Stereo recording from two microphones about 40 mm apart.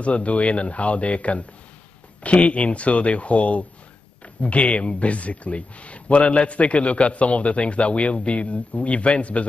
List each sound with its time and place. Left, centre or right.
0.0 s speech: left